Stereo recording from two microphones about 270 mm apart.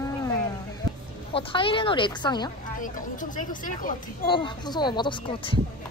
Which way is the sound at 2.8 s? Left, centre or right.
Left.